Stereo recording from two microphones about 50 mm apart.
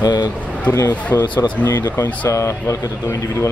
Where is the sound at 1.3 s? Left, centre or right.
Left.